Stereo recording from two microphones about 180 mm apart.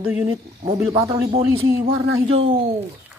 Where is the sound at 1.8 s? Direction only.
30° right (ahead or behind).